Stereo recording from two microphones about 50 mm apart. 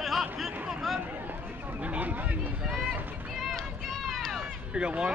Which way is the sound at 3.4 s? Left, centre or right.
Centre.